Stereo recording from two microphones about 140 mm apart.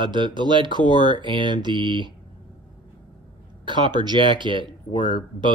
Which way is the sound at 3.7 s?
35° right (ahead or behind).